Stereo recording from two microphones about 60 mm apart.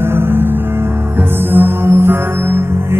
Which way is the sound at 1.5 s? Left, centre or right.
Right.